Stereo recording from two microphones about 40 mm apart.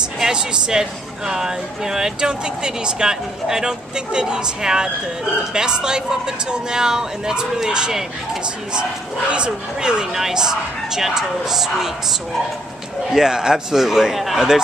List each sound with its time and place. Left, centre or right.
0.2 s speech: right
9.3 s speech: right
10.1 s speech: centre